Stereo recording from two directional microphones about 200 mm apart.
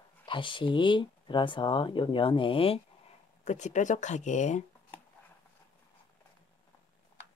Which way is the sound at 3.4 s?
35° left (ahead or behind).